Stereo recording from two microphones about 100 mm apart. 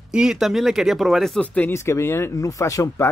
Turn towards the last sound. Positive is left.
turn(degrees=35)  # may be behind; listen again after turning